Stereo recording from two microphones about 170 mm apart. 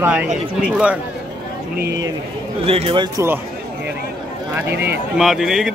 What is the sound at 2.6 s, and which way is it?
Speech, 35° right (ahead or behind).